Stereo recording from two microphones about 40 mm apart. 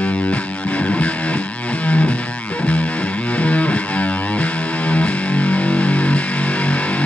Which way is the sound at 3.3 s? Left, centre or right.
Left.